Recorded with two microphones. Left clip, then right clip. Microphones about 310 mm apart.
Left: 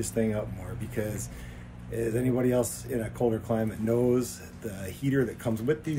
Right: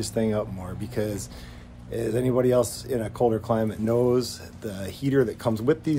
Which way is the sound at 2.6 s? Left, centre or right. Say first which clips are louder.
Right 5 dB; centre.